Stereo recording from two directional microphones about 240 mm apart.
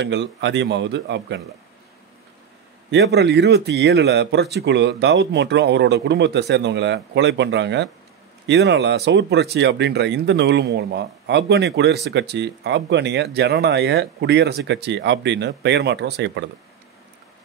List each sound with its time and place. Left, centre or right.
0.0 s speech: right
2.9 s speech: right